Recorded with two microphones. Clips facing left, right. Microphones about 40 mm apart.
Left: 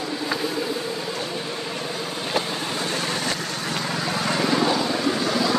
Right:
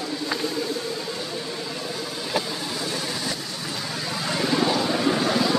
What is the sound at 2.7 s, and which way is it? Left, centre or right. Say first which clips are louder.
Vehicle: left 4 dB; left.